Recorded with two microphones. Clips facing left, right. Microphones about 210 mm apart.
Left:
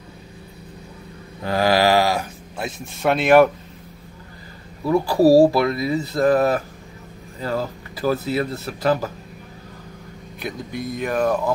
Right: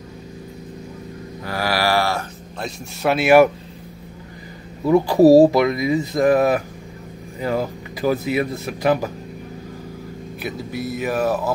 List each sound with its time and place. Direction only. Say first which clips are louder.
1.4 s mantra: left 5 dB; 25° left (ahead or behind)
2.6 s speech: even; centre (ahead or behind)
4.8 s speech: right 3 dB; 20° right (ahead or behind)
10.4 s speech: right 1 dB; 5° right (ahead or behind)